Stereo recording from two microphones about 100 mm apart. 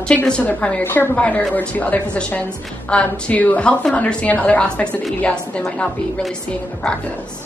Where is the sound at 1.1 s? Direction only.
15° left (ahead or behind).